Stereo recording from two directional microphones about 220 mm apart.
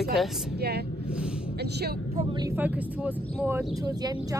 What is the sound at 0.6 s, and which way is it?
Speech, 45° right (ahead or behind).